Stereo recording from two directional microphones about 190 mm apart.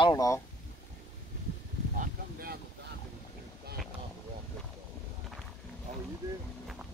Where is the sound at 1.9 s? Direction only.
50° right (ahead or behind).